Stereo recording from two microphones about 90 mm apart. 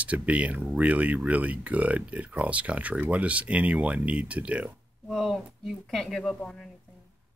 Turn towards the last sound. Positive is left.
turn(degrees=5)  # may be behind; listen again after turning